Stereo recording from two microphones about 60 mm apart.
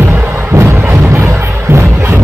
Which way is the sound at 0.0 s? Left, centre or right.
Right.